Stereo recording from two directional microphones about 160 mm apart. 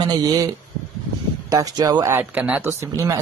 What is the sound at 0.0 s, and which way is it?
A man's voice, 25° right (ahead or behind).